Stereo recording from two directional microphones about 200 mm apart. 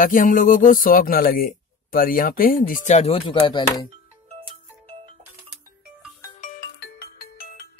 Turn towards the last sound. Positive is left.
turn(degrees=50)  # may be behind; listen again after turning